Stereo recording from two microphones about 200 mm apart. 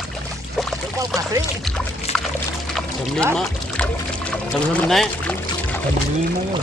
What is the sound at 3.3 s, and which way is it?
Speech, 5° left (ahead or behind).